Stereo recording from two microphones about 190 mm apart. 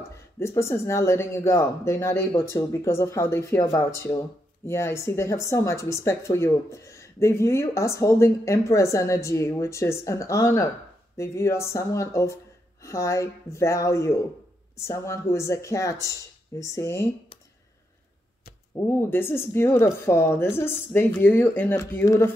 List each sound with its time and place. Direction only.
0.4 s speech: 15° left (ahead or behind)
18.8 s speech: 10° left (ahead or behind)